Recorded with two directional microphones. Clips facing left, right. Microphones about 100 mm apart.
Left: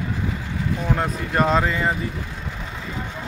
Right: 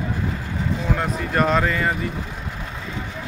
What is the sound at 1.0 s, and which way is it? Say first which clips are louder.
Speech: right 1 dB; 25° left (ahead or behind).